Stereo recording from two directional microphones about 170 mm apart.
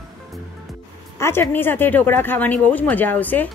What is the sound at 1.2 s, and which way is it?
Speech, 15° left (ahead or behind).